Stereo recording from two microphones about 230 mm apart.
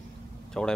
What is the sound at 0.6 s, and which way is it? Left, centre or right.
Speech, centre.